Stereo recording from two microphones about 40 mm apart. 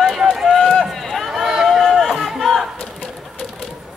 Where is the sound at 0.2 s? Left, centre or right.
Centre.